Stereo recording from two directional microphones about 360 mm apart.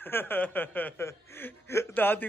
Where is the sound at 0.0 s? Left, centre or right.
Centre.